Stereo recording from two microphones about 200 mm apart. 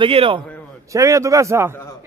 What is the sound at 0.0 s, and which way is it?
Speech, 25° right (ahead or behind).